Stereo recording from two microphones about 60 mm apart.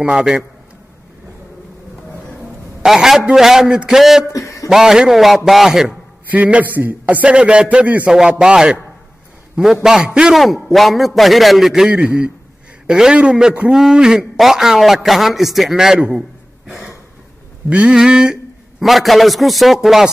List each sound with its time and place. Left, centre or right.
0.0 s a man's voice: centre
2.8 s a man's voice: centre
4.3 s speech: left
4.6 s a man's voice: centre
6.2 s a man's voice: right
9.8 s a man's voice: centre
10.4 s a man's voice: centre
12.0 s a man's voice: right
16.2 s a sound: centre
17.6 s a sound: centre
18.9 s a man's voice: centre